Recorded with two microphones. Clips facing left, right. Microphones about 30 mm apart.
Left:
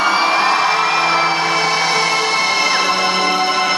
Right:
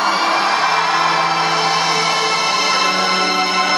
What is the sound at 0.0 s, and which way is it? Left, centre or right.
Music, centre.